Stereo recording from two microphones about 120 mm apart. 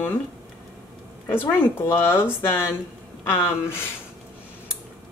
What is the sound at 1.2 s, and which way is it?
Speech, 15° left (ahead or behind).